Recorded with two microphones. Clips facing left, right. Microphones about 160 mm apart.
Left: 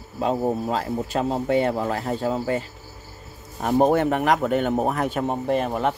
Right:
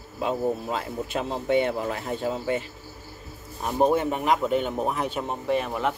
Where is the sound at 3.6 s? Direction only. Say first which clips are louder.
Left 4 dB; 60° left (ahead or behind).